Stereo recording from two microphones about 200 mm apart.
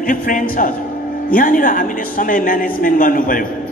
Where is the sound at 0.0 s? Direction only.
45° left (ahead or behind).